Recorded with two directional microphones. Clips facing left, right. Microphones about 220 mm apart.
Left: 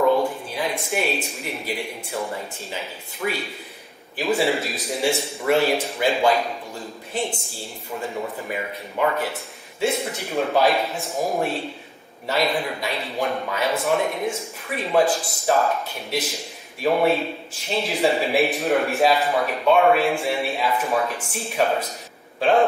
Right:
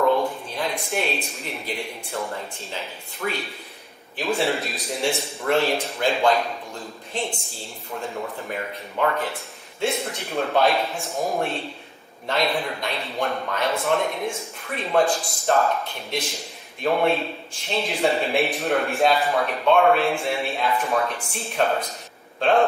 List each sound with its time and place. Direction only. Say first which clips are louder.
0.0 s a sound: left 2 dB; centre (ahead or behind)
1.5 s speech: left 2 dB; centre (ahead or behind)
16.8 s speech: left 2 dB; 5° left (ahead or behind)